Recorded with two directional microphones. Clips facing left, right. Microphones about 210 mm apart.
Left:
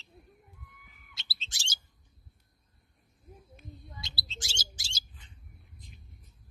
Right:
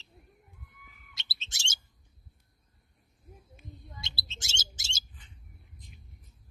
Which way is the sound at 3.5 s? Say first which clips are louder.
Even; 25° right (ahead or behind).